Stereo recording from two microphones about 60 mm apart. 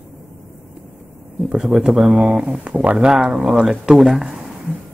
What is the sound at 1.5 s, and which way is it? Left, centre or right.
Speech, centre.